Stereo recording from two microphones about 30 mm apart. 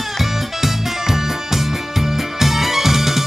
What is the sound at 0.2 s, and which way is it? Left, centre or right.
Music, centre.